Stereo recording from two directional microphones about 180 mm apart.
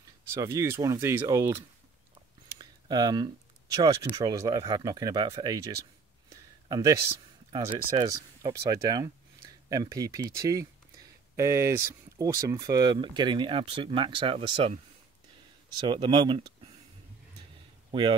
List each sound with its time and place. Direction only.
0.3 s speech: 15° right (ahead or behind)
2.6 s a sound: 20° right (ahead or behind)
3.7 s speech: 20° right (ahead or behind)
6.7 s speech: 20° right (ahead or behind)
8.0 s speech: 20° right (ahead or behind)
15.9 s speech: 25° right (ahead or behind)
17.9 s speech: 30° right (ahead or behind)